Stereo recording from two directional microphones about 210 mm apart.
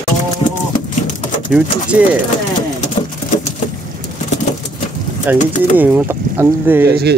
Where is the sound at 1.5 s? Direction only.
5° right (ahead or behind).